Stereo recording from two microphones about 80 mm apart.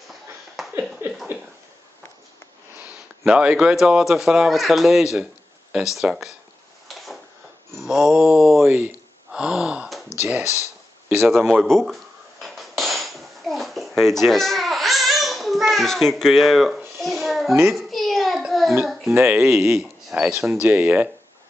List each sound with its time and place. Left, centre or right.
0.6 s a sound: centre
1.0 s a sound: right
2.8 s speech: centre
5.9 s mantra: centre
7.8 s mantra: centre
8.6 s speech: right
9.3 s gasp: centre
10.1 s speech: left
11.1 s mantra: centre
12.4 s dishes: centre
17.7 s a sound: centre
19.0 s speech: right
19.3 s speech: centre
20.6 s speech: right